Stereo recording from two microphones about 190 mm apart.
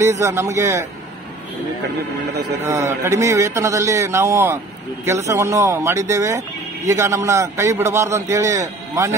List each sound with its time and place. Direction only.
0.2 s a man's voice: 15° right (ahead or behind)
2.6 s a man's voice: 15° right (ahead or behind)